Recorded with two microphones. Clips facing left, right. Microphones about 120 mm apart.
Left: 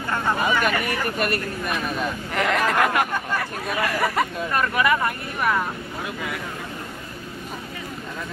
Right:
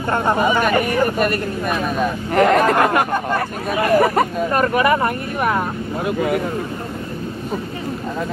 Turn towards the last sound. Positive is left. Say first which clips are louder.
# right 11 dB
turn(degrees=-45)  # may be behind; listen again after turning